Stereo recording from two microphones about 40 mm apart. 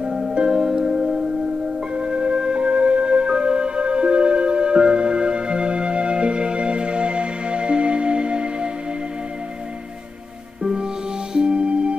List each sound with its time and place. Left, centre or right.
0.0 s music: centre
10.6 s music: centre